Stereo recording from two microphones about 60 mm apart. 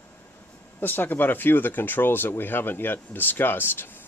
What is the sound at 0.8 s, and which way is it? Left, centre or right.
Speech, left.